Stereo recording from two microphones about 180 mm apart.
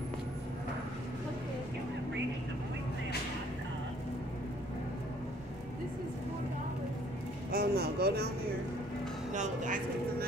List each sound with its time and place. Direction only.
7.5 s speech: 60° right (ahead or behind)
9.3 s speech: 40° right (ahead or behind)